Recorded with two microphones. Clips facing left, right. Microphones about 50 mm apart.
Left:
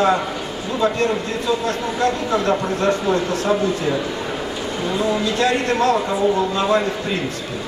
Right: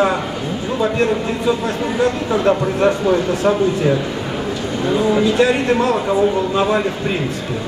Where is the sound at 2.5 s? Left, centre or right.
Centre.